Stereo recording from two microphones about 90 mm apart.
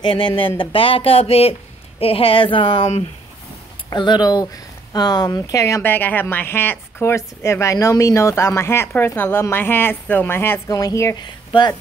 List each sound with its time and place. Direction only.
0.0 s speech: 70° left (ahead or behind)
0.6 s speech: 90° left
3.9 s speech: 55° left (ahead or behind); by 5.8 s 35° left (ahead or behind)
5.8 s speech: 20° left (ahead or behind)
10.7 s a woman's voice: 40° left (ahead or behind)
11.2 s a woman's voice: 60° left (ahead or behind)